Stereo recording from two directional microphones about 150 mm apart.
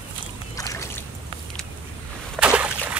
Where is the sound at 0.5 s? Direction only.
20° left (ahead or behind).